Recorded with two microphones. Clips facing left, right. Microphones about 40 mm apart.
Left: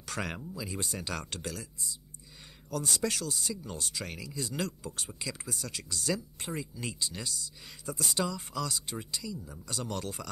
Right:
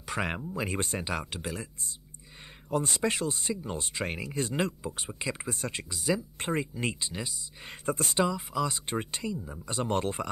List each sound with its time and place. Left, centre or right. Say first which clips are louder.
0.0 s speech: right 4 dB; right
0.5 s speech: right 6 dB; right
1.0 s speech: right 3 dB; centre
2.7 s speech: right 4 dB; right
5.9 s speech: right 3 dB; centre
6.3 s speech: right 7 dB; right
7.1 s speech: right 2 dB; right
7.6 s speech: right 7 dB; right
8.2 s speech: right 5 dB; centre
8.7 s speech: right 5 dB; right